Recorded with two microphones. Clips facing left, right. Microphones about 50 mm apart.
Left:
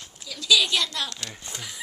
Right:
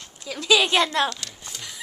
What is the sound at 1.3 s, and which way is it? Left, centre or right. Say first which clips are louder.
Speech: left 1 dB; centre.